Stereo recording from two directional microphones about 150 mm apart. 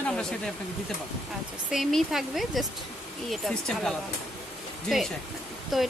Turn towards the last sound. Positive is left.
turn(degrees=0)  # may be behind; listen again after turning